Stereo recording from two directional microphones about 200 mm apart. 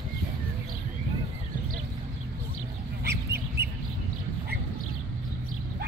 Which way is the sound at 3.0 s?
55° right (ahead or behind).